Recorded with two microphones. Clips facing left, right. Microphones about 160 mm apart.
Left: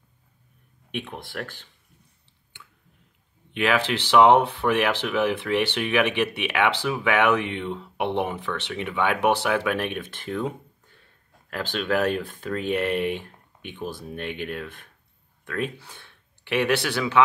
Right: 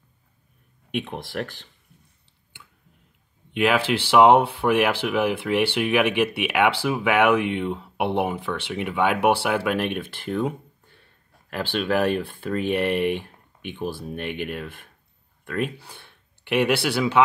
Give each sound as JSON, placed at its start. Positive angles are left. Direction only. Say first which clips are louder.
{"t": 0.9, "sound": "speech", "louder": "right 4 dB", "side_deg": -20}
{"t": 3.5, "sound": "speech", "louder": "right 2 dB", "side_deg": -10}
{"t": 11.5, "sound": "speech", "louder": "right 2 dB", "side_deg": -5}